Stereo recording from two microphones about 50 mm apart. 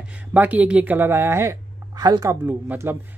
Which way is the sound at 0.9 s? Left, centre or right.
Right.